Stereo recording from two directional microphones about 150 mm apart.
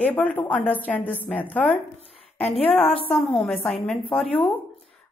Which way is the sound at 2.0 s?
45° left (ahead or behind).